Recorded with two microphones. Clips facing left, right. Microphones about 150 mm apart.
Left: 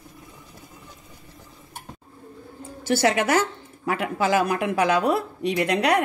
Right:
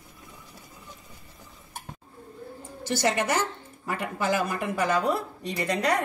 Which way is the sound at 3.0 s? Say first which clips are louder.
Left 4 dB; 90° left.